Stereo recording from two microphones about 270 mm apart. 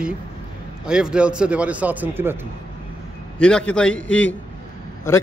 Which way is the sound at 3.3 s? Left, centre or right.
Centre.